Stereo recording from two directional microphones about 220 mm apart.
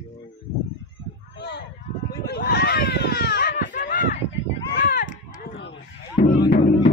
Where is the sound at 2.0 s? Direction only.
45° left (ahead or behind).